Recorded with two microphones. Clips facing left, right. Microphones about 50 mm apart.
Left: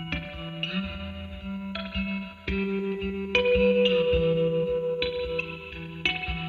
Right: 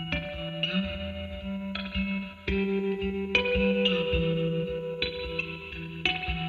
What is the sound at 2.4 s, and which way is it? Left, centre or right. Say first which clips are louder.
Music: right 1 dB; centre.